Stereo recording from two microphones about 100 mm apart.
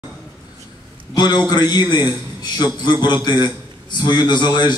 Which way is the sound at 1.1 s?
45° left (ahead or behind).